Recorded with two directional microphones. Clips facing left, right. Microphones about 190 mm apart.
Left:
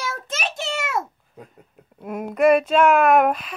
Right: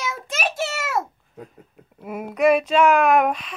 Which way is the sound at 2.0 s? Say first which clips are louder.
Left 1 dB; 5° right (ahead or behind).